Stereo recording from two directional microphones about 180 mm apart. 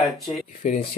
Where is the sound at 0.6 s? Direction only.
50° left (ahead or behind).